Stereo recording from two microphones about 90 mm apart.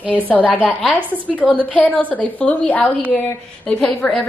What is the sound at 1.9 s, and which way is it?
A woman's voice, 15° left (ahead or behind).